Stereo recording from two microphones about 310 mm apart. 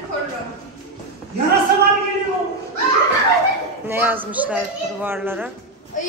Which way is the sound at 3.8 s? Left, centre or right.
Centre.